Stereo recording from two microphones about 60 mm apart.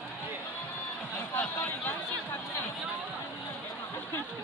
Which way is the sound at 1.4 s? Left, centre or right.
Left.